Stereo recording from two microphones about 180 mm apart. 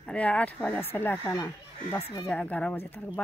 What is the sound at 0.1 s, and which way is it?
Speech, 5° left (ahead or behind).